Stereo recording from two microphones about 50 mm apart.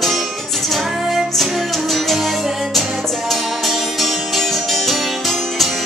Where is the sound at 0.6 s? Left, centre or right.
Centre.